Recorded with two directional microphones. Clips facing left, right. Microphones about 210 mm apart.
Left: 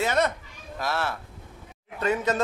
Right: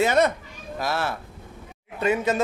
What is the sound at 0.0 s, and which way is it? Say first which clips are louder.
Speech: right 5 dB; 10° right (ahead or behind).